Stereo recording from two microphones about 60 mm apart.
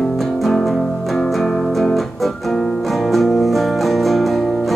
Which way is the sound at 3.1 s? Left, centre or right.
Centre.